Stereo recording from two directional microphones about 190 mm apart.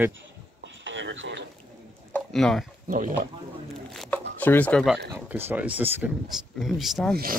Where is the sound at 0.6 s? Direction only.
75° right (ahead or behind).